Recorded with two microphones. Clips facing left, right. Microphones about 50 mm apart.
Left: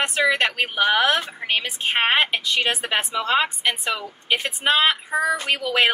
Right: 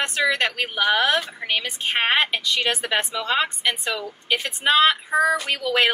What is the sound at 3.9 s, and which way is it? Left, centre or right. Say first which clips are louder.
Speech: left 1 dB; left.